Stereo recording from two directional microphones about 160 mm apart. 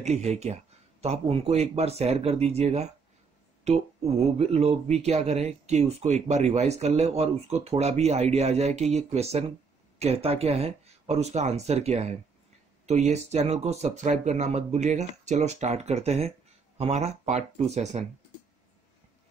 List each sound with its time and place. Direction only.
0.0 s speech: 45° right (ahead or behind)
4.4 s speech: 40° right (ahead or behind)